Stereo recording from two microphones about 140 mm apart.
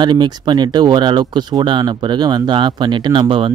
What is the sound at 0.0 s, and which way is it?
Speech, 30° right (ahead or behind).